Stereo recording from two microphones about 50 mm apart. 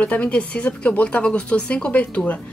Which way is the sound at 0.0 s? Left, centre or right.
Left.